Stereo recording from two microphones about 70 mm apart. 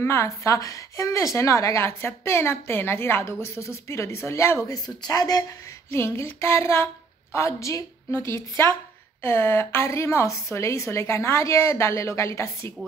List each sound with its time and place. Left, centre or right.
0.0 s a woman's voice: left
4.8 s a woman's voice: left
5.9 s a woman's voice: left
9.2 s a woman's voice: left